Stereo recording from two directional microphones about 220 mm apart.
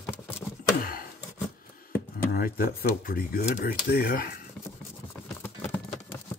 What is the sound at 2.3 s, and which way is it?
Speech, 40° left (ahead or behind).